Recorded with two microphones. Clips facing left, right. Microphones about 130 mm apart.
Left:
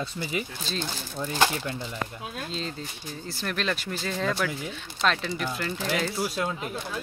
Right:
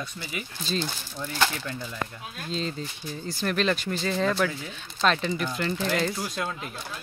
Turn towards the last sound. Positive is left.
turn(degrees=5)  # may be behind; listen again after turning